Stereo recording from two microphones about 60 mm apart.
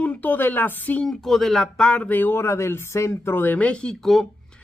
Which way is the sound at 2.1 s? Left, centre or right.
Left.